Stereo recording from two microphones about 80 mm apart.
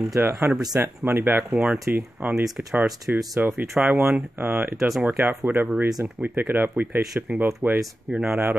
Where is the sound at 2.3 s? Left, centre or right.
Centre.